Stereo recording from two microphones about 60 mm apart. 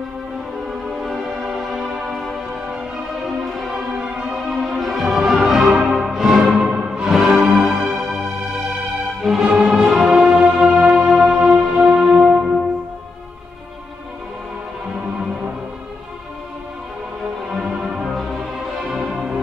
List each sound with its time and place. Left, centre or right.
1.3 s music: centre
6.6 s music: centre
7.1 s music: centre
9.2 s music: centre
17.6 s music: centre